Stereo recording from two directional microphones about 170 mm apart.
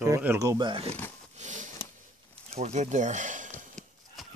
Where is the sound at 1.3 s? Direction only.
45° right (ahead or behind).